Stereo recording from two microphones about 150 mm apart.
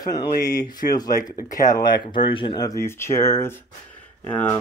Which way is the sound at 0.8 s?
65° left (ahead or behind).